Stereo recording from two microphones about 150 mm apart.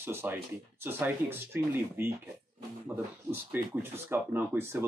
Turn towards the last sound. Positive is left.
turn(degrees=-15)  # may be behind; listen again after turning